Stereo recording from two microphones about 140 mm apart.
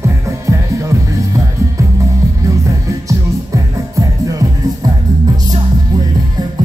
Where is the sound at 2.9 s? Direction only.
25° right (ahead or behind).